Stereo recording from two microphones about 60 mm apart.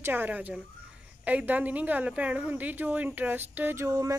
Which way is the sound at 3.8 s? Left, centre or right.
Right.